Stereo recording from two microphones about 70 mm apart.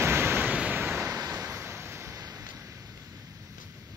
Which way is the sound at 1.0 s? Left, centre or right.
Right.